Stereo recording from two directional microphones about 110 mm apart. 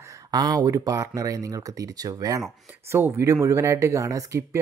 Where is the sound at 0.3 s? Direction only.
40° right (ahead or behind).